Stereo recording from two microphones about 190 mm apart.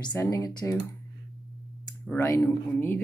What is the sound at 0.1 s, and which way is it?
Speech, 15° left (ahead or behind).